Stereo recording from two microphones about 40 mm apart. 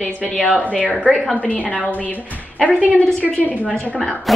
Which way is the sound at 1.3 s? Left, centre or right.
Left.